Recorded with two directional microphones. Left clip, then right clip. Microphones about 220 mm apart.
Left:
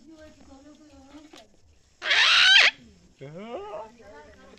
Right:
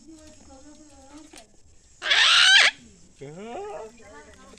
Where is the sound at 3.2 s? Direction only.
30° left (ahead or behind).